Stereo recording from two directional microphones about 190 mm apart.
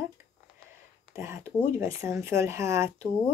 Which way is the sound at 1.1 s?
15° right (ahead or behind).